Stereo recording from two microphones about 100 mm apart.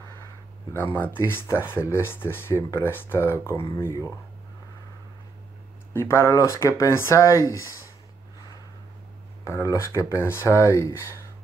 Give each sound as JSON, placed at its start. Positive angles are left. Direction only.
{"t": 0.7, "sound": "speech", "side_deg": 20}
{"t": 5.9, "sound": "speech", "side_deg": 25}
{"t": 9.4, "sound": "speech", "side_deg": 30}